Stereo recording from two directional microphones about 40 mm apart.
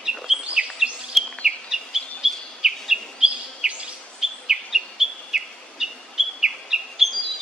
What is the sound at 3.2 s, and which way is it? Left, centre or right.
Bird vocalization, right.